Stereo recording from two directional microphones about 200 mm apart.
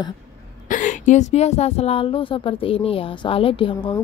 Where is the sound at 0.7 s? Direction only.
40° left (ahead or behind).